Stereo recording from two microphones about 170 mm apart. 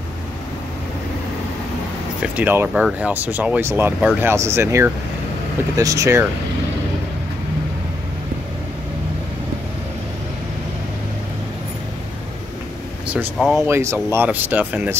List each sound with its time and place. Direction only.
2.3 s speech: 10° right (ahead or behind)
13.1 s speech: 5° right (ahead or behind)
13.7 s speech: 15° right (ahead or behind)